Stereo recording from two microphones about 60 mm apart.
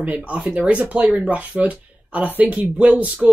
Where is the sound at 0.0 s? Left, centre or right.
Right.